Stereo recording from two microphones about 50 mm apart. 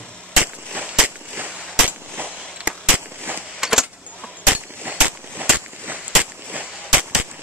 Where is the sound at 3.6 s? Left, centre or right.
Centre.